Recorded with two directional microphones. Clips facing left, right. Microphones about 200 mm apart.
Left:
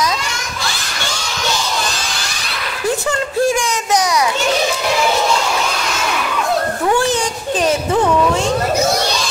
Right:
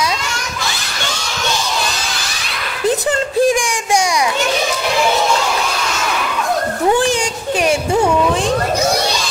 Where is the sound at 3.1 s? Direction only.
15° right (ahead or behind).